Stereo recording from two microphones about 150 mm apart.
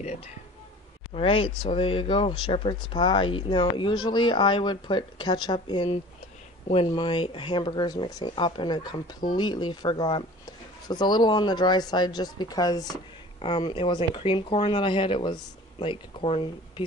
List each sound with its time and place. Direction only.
1.1 s speech: 35° left (ahead or behind)